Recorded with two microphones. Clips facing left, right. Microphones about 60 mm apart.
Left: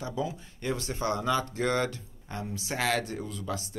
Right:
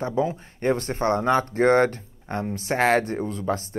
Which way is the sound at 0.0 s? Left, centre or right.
Right.